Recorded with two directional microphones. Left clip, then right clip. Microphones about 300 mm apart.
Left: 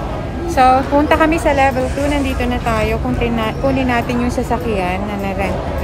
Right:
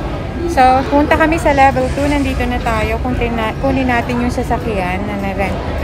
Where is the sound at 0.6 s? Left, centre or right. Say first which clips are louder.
Right 1 dB; centre.